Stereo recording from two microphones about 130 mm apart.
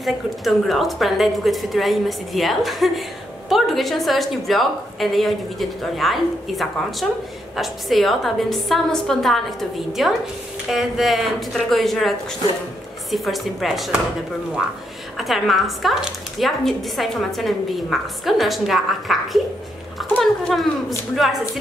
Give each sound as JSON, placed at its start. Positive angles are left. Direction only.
{"t": 0.0, "sound": "a woman's voice", "side_deg": 0}
{"t": 15.1, "sound": "a woman's voice", "side_deg": 0}